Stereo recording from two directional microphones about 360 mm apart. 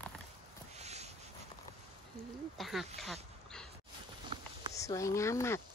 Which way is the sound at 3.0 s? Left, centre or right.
Centre.